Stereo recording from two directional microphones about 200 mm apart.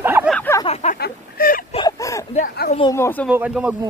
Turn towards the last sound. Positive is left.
turn(degrees=-5)  # may be behind; listen again after turning